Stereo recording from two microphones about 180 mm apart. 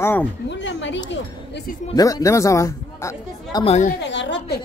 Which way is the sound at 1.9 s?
20° left (ahead or behind).